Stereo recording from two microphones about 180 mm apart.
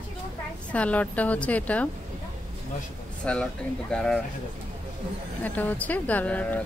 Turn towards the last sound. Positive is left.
turn(degrees=10)  # may be behind; listen again after turning